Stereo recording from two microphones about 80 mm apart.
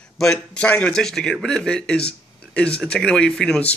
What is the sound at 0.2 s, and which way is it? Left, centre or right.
Speech, centre.